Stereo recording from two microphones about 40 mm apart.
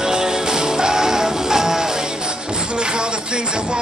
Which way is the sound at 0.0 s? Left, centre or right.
Centre.